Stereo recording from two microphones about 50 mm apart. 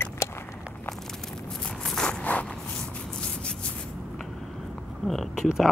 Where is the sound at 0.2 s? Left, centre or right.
Left.